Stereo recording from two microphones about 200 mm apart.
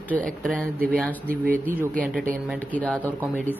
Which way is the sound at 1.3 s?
45° right (ahead or behind).